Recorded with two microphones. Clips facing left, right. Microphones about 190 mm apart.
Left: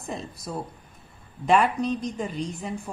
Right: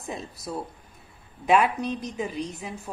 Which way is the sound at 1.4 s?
Centre (ahead or behind).